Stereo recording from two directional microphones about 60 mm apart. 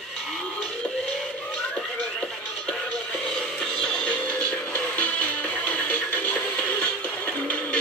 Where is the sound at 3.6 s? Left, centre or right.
Centre.